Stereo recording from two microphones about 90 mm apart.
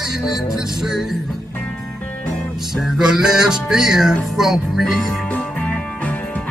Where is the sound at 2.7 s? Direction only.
5° right (ahead or behind).